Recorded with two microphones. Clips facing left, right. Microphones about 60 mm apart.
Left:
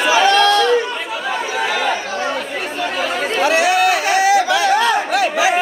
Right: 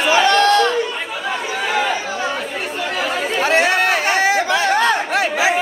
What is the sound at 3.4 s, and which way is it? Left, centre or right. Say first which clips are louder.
Chatter: left 2 dB; right.